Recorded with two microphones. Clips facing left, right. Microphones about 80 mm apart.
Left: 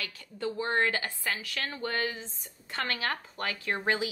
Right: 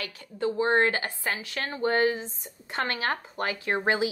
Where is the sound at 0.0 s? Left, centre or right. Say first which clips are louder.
Right 5 dB; right.